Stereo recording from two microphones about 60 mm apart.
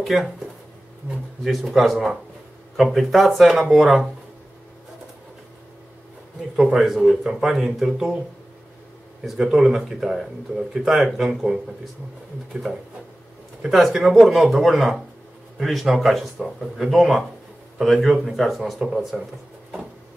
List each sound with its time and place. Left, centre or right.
0.0 s speech: centre
6.5 s speech: centre
9.2 s speech: centre
13.6 s speech: centre